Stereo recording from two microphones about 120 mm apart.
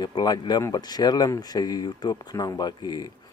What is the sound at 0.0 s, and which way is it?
Speech, 35° left (ahead or behind).